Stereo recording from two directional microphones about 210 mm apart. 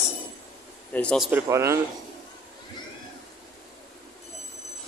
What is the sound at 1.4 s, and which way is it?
Speech, 15° right (ahead or behind).